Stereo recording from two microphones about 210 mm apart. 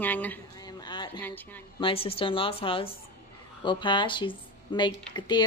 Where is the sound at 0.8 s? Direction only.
20° left (ahead or behind).